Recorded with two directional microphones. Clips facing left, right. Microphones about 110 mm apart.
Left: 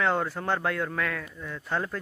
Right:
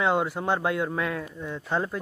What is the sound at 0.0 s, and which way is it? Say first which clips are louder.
Speech: right 2 dB; 15° right (ahead or behind).